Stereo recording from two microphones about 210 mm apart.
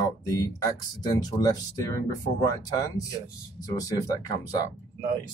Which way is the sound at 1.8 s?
15° left (ahead or behind).